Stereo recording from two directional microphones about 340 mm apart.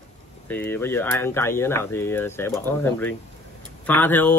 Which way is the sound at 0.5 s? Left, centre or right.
Centre.